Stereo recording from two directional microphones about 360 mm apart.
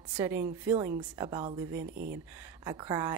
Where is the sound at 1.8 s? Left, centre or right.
Right.